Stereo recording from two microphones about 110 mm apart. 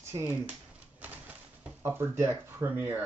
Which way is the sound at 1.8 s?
25° right (ahead or behind).